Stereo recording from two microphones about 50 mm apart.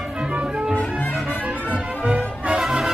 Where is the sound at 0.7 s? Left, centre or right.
Left.